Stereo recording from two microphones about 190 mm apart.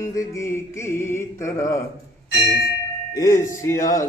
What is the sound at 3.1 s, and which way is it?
Mantra, 15° left (ahead or behind).